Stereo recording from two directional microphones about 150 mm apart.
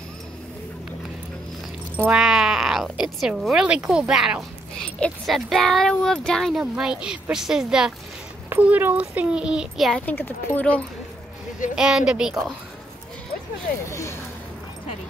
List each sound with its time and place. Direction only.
2.0 s a child's voice: 5° right (ahead or behind)
10.0 s speech: 15° left (ahead or behind)
11.7 s speech: 5° right (ahead or behind)
13.8 s a sound: 20° left (ahead or behind)